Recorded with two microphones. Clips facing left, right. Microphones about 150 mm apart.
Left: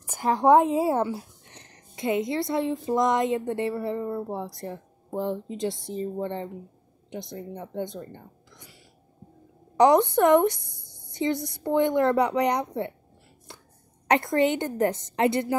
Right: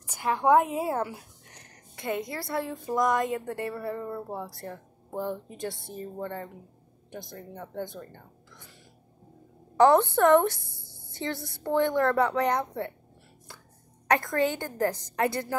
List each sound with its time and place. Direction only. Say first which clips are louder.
0.0 s speech: left 4 dB; 45° left (ahead or behind); by 8.7 s 15° left (ahead or behind)
9.8 s a woman's voice: left 1 dB; 15° left (ahead or behind)
14.0 s speech: left 3 dB; 20° left (ahead or behind)